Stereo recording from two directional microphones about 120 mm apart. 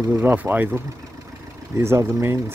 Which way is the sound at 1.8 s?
20° right (ahead or behind).